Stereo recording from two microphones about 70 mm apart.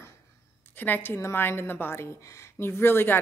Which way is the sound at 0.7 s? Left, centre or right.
Left.